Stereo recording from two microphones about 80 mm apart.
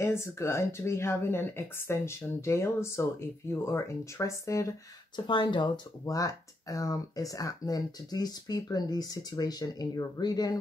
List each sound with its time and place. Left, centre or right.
0.0 s speech: left
5.1 s speech: left
6.0 s speech: left